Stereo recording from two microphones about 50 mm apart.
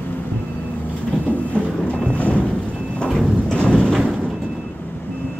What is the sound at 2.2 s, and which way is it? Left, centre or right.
Music, left.